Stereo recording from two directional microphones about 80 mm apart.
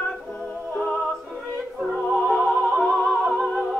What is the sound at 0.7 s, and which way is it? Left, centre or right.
Music, centre.